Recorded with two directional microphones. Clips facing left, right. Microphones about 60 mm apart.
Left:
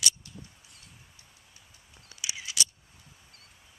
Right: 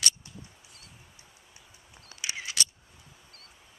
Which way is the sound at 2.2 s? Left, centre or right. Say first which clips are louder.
Right 1 dB; right.